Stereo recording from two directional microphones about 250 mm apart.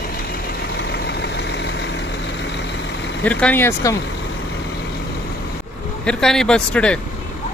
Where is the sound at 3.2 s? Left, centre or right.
Centre.